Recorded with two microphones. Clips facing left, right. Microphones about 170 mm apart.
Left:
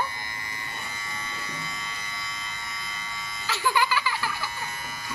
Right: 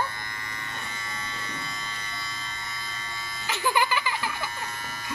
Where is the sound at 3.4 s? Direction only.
20° right (ahead or behind).